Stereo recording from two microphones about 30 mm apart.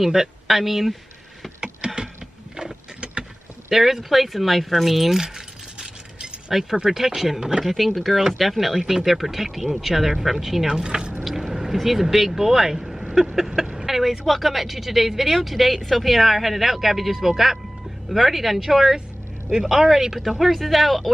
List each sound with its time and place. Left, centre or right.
0.0 s speech: centre
1.8 s a sound: right
3.7 s speech: centre
6.5 s speech: centre
10.8 s speech: right
11.2 s vehicle: centre
11.5 s speech: centre